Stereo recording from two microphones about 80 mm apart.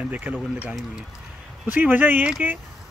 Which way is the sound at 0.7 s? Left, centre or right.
Centre.